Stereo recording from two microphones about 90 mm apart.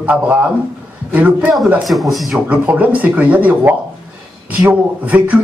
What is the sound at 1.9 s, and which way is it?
Speech, centre (ahead or behind).